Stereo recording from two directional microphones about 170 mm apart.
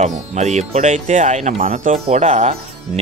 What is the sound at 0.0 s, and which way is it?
Speech, 45° right (ahead or behind).